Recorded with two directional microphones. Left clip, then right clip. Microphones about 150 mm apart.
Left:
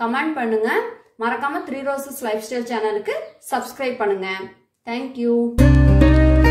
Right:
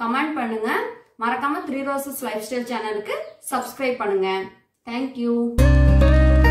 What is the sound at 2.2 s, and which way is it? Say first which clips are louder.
Speech: left 3 dB; 35° left (ahead or behind).